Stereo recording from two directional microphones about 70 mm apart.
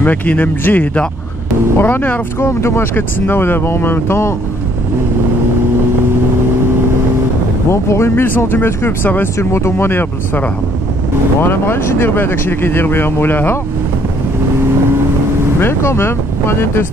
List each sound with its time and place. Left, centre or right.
0.0 s speech: left
2.4 s speech: left
7.7 s speech: left
11.4 s speech: left
15.6 s speech: left